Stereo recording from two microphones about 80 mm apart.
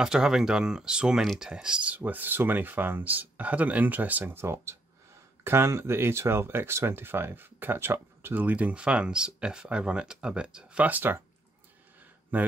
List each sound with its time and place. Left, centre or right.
0.0 s speech: centre
1.2 s speech: centre
1.5 s speech: centre
2.0 s speech: right
12.3 s speech: centre